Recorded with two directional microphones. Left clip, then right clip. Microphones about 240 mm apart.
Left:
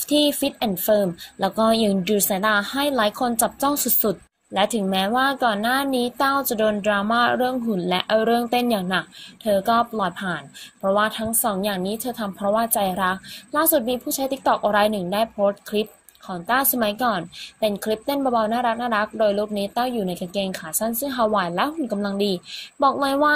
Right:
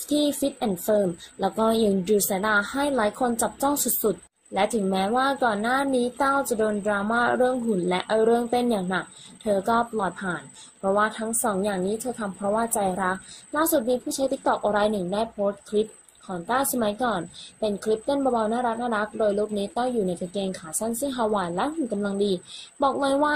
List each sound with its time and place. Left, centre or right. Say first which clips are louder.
0.1 s speech: left 4 dB; left
5.1 s a woman's voice: left 3 dB; left